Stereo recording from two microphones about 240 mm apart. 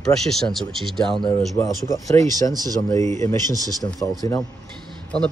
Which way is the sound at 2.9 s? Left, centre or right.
Centre.